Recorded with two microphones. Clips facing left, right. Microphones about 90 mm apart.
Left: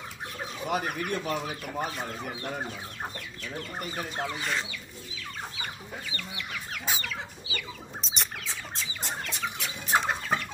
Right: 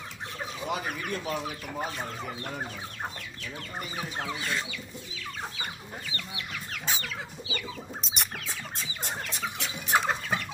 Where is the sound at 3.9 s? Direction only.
5° right (ahead or behind).